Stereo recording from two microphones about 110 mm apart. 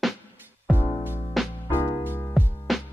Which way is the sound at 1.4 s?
Centre (ahead or behind).